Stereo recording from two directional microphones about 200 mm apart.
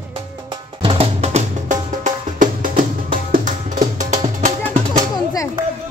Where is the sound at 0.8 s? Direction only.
30° right (ahead or behind).